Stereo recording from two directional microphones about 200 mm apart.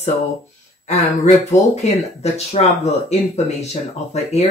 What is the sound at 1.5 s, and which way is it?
Speech, 35° left (ahead or behind).